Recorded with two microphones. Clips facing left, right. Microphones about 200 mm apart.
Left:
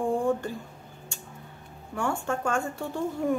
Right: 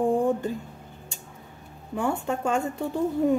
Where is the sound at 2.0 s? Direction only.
20° right (ahead or behind).